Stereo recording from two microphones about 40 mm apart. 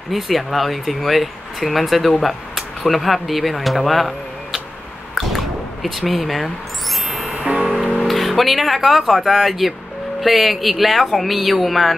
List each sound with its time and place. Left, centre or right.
0.1 s speech: centre
5.1 s drip: centre
7.1 s music: centre
7.3 s music: centre
7.8 s music: centre
8.1 s speech: centre